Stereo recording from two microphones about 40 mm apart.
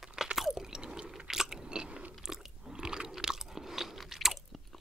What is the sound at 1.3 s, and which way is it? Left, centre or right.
Biting, centre.